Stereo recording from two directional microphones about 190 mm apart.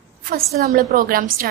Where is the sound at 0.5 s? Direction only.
50° right (ahead or behind).